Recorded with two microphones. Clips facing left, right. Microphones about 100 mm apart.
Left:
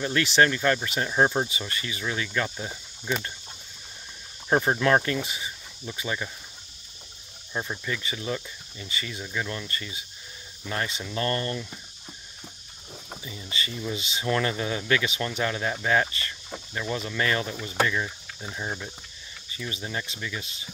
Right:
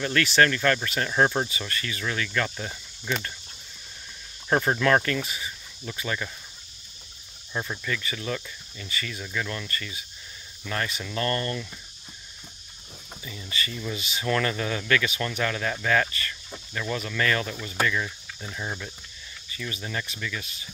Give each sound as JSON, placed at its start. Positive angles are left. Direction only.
{"t": 0.0, "sound": "speech", "side_deg": 20}
{"t": 4.5, "sound": "speech", "side_deg": 15}
{"t": 7.5, "sound": "speech", "side_deg": 10}
{"t": 13.1, "sound": "speech", "side_deg": 20}